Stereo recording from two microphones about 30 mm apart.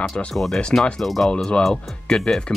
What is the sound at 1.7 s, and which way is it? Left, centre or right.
Speech, left.